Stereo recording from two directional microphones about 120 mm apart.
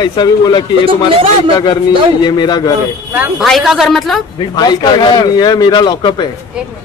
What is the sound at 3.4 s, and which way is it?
Speech, centre (ahead or behind).